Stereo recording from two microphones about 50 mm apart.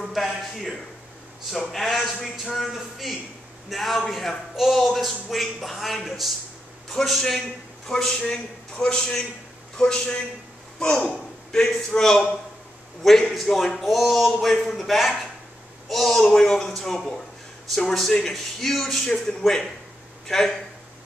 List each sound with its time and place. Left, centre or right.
0.0 s a man's voice: centre
16.2 s a man's voice: centre